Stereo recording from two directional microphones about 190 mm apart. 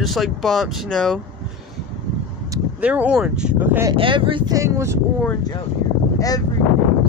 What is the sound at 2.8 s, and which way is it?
Speech, 5° right (ahead or behind).